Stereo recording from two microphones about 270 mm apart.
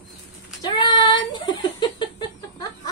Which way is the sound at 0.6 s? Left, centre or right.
Centre.